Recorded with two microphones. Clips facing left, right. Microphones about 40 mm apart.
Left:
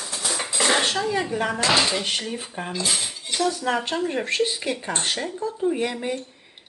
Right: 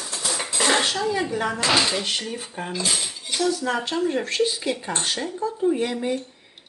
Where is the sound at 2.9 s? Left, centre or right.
Centre.